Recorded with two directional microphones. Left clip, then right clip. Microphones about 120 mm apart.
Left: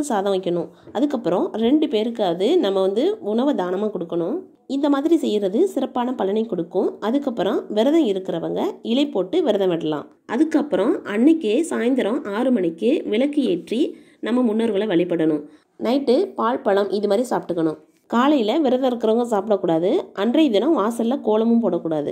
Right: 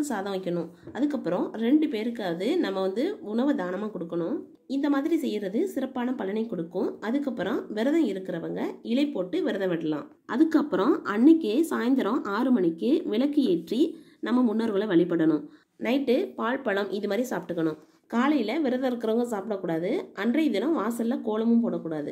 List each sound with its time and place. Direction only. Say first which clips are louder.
0.0 s speech: left 9 dB; 35° left (ahead or behind)
10.6 s speech: left 5 dB; centre (ahead or behind)
15.8 s speech: left 7 dB; 25° left (ahead or behind)
18.1 s speech: left 8 dB; 45° left (ahead or behind)